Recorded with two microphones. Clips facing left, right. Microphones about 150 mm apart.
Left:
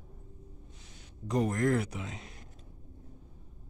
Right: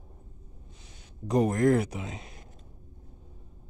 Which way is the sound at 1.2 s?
15° right (ahead or behind).